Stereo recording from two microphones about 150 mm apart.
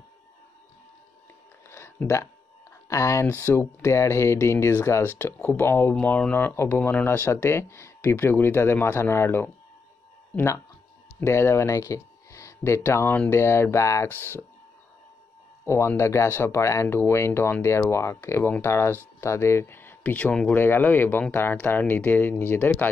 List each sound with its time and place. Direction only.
1.7 s a sound: 15° left (ahead or behind)
2.9 s speech: 20° left (ahead or behind)
15.6 s speech: 20° left (ahead or behind)